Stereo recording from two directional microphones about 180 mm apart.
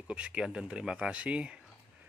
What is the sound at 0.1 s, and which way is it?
Speech, 5° right (ahead or behind).